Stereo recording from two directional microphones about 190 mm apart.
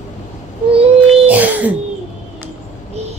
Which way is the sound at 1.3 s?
10° right (ahead or behind).